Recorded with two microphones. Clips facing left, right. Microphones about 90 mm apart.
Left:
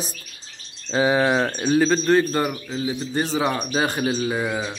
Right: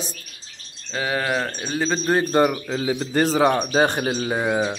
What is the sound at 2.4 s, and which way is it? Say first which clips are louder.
Speech: right 6 dB; 35° right (ahead or behind).